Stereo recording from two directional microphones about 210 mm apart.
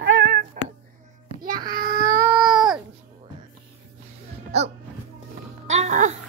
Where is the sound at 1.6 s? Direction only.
45° right (ahead or behind).